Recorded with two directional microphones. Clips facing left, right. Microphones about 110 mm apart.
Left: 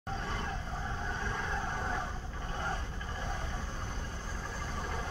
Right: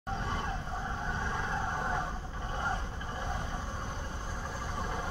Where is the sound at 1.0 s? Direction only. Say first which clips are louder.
Right 1 dB; 15° right (ahead or behind).